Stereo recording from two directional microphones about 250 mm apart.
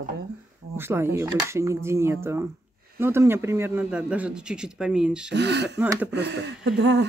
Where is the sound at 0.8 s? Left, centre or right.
Centre.